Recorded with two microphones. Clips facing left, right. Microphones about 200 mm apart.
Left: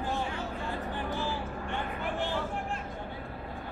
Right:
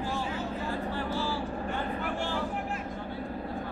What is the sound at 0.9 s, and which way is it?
Vehicle, 20° left (ahead or behind).